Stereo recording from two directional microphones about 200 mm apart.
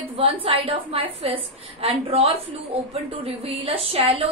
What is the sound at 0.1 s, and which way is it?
A woman's voice, 30° right (ahead or behind).